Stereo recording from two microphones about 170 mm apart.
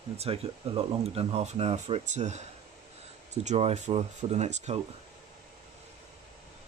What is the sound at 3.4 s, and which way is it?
Speech, 40° right (ahead or behind).